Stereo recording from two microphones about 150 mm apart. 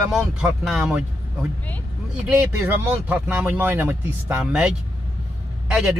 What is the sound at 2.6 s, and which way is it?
Speech, 15° right (ahead or behind).